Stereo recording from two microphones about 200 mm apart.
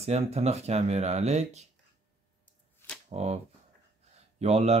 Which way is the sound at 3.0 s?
35° right (ahead or behind).